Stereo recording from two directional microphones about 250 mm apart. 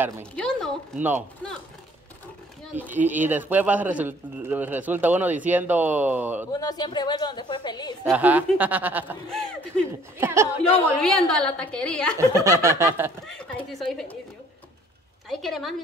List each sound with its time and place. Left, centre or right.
0.4 s a woman's voice: centre
2.6 s a man's voice: centre
6.5 s a woman's voice: centre
8.0 s a man's voice: centre
10.2 s a man's voice: centre
11.0 s a woman's voice: centre
12.2 s a man's voice: centre
13.3 s a woman's voice: centre
15.2 s a woman's voice: centre